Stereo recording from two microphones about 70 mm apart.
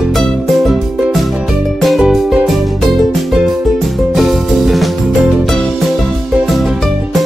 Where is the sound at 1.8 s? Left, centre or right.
Centre.